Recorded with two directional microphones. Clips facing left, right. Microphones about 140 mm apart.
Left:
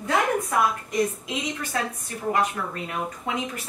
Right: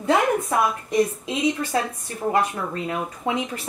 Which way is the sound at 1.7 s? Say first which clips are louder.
Right 4 dB; 25° right (ahead or behind).